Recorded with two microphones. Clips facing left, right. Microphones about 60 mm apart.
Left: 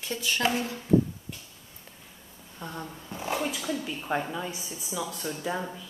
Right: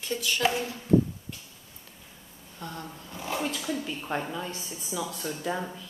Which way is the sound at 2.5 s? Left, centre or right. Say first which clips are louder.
Left 1 dB; centre.